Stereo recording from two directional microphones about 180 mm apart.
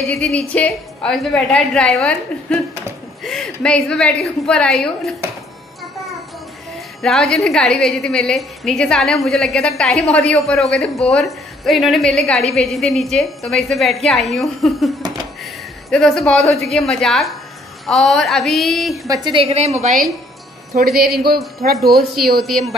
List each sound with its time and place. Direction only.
0.2 s a woman's voice: 5° left (ahead or behind)
7.0 s a woman's voice: 5° left (ahead or behind)
19.0 s a woman's voice: 20° right (ahead or behind)
19.4 s a woman's voice: 35° right (ahead or behind)
19.9 s a woman's voice: centre (ahead or behind)
20.7 s a woman's voice: 60° right (ahead or behind)
21.7 s a woman's voice: centre (ahead or behind)